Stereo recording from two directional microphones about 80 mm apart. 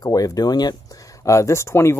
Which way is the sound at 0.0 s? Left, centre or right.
Left.